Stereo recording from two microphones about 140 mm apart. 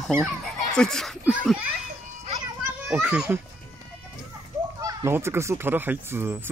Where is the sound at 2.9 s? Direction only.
10° right (ahead or behind).